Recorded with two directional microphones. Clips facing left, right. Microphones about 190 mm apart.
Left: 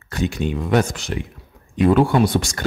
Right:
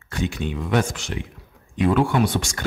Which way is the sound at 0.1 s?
40° left (ahead or behind).